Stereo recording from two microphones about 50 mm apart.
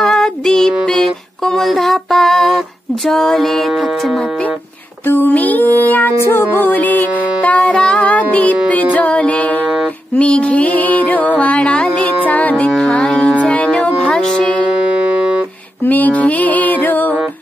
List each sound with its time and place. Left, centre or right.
0.0 s a sound: centre
3.1 s music: centre
5.0 s music: left; by 8.1 s centre
8.1 s music: left
14.2 s music: centre
15.8 s female singing: left